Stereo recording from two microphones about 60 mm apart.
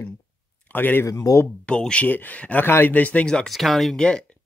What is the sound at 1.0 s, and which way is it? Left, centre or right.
Speech, left.